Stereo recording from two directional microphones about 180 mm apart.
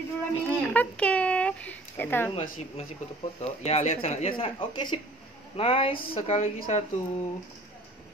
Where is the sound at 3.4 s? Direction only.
35° left (ahead or behind).